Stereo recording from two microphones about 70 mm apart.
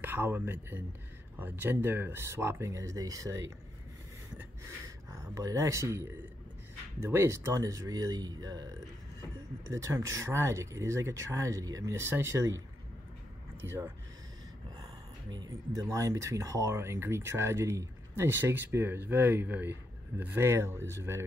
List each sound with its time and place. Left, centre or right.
0.0 s speech: right
4.6 s a sound: right
5.4 s speech: right
9.9 s speech: right
11.9 s speech: right
13.6 s speech: right
15.7 s speech: right